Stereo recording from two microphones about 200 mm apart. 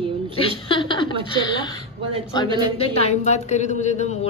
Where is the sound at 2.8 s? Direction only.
30° left (ahead or behind).